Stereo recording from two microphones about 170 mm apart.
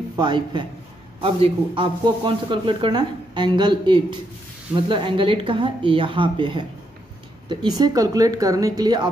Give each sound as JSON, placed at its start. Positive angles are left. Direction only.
{"t": 0.1, "sound": "a man's voice", "side_deg": -25}